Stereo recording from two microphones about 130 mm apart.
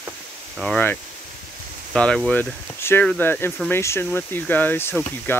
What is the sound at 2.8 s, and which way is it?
Speech, 20° left (ahead or behind).